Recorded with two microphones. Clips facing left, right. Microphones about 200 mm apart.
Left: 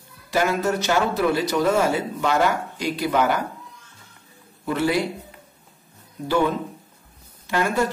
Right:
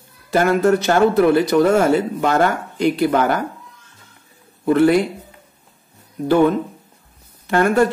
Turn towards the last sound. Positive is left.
turn(degrees=-55)  # may be behind; listen again after turning